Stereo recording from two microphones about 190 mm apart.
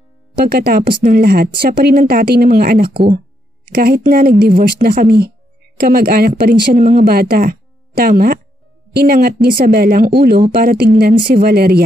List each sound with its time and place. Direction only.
0.4 s speech: 55° right (ahead or behind)
2.9 s speech: 25° right (ahead or behind)
3.7 s speech: 55° right (ahead or behind)
6.6 s speech: 35° right (ahead or behind)
7.1 s speech: 55° right (ahead or behind)